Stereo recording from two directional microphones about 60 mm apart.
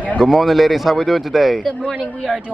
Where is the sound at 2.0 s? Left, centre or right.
Left.